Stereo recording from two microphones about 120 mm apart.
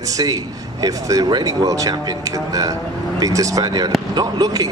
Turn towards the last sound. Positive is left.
turn(degrees=-30)  # may be behind; listen again after turning